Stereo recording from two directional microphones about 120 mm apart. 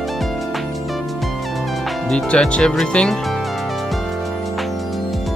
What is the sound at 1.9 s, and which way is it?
Speech, 5° left (ahead or behind).